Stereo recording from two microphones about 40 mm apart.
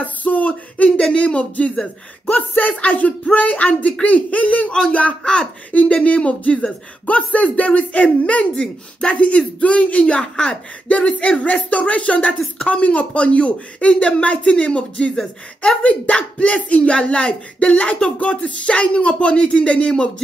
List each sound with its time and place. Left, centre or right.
0.0 s a sound: left
1.1 s speech: left
2.3 s speech: left
5.2 s speech: centre
5.7 s speech: left; by 10.6 s centre
10.9 s speech: left
15.1 s speech: centre
15.8 s speech: left